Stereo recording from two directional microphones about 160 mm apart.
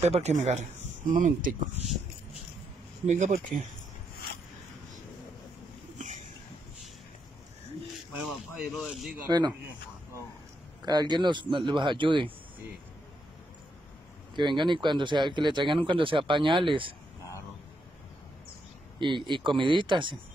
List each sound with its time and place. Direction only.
0.0 s speech: 40° right (ahead or behind)
3.1 s speech: 50° right (ahead or behind)
5.9 s a sound: 50° right (ahead or behind)
8.2 s speech: centre (ahead or behind)
10.8 s speech: 25° right (ahead or behind)
14.3 s speech: 30° right (ahead or behind)
18.9 s speech: 30° right (ahead or behind)